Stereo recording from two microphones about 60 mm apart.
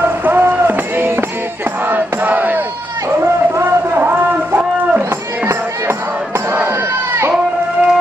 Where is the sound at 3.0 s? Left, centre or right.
Right.